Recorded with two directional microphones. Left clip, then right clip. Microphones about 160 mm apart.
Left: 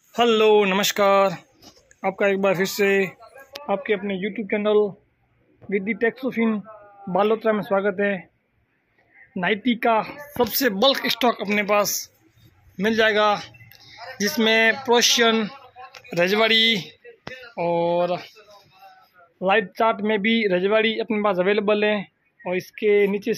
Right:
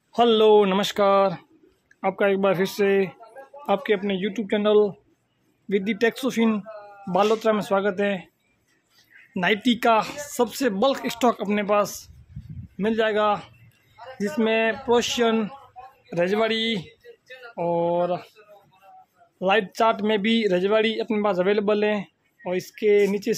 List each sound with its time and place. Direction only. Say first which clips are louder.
0.1 s speech: even; 15° right (ahead or behind)
3.6 s speech: right 1 dB; 30° right (ahead or behind)
7.1 s speech: even; 10° right (ahead or behind)
9.3 s speech: right 1 dB; 15° right (ahead or behind)
11.0 s speech: left 2 dB; 20° right (ahead or behind)
12.7 s speech: left 3 dB; 5° left (ahead or behind)
19.4 s speech: left 1 dB; 10° right (ahead or behind)